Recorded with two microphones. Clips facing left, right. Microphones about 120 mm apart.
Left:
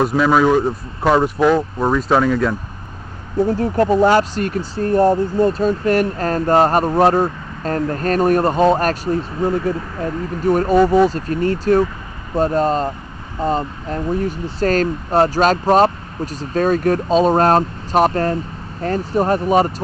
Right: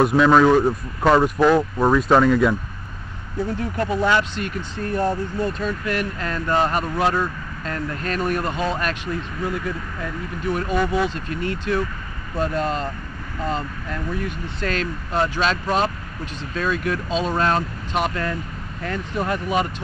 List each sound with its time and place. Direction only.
0.0 s speech: centre (ahead or behind)
3.3 s speech: 40° left (ahead or behind)